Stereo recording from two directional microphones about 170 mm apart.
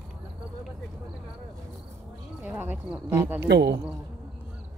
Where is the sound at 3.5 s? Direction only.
85° right.